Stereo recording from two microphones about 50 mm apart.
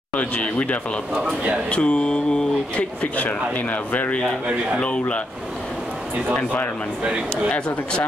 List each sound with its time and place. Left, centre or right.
0.1 s speech: left
3.0 s speech: left
6.3 s speech: left
7.5 s speech: left